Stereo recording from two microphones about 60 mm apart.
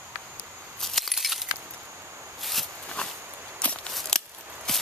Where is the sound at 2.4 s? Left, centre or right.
Centre.